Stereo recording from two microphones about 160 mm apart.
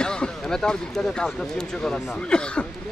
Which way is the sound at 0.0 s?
5° left (ahead or behind).